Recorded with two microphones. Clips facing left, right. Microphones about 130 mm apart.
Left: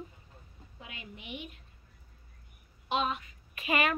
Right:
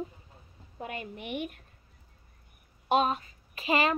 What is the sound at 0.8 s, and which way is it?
Speech, 50° right (ahead or behind).